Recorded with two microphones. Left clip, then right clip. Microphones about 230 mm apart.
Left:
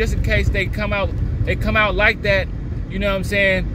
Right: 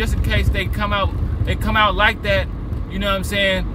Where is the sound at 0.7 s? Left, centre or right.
Right.